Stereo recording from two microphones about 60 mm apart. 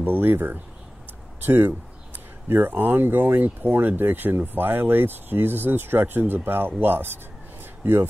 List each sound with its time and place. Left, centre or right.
0.0 s speech: right